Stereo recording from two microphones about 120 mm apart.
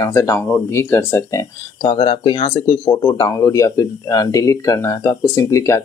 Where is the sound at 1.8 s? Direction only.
45° left (ahead or behind).